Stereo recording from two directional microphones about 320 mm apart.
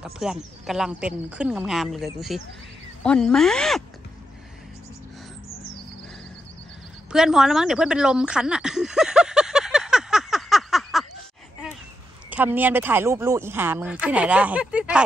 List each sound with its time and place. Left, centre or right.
0.0 s speech: centre
7.1 s a sound: centre
12.3 s speech: centre